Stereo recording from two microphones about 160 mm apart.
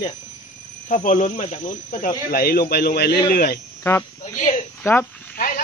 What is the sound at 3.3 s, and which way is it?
Speech, 75° left (ahead or behind).